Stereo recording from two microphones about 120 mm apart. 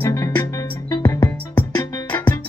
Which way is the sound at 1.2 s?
35° left (ahead or behind).